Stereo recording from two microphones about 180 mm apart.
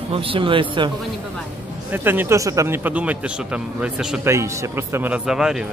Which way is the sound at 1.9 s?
10° right (ahead or behind).